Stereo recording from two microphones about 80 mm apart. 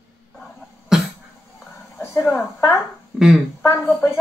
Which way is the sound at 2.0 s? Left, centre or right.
Left.